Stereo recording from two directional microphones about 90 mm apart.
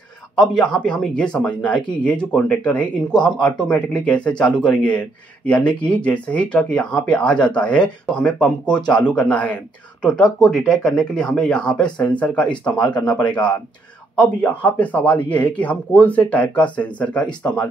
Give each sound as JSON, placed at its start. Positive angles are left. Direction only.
{"t": 0.4, "sound": "speech", "side_deg": 10}
{"t": 10.5, "sound": "speech", "side_deg": 0}